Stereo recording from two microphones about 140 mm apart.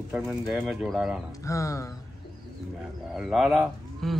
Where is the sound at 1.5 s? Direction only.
20° left (ahead or behind).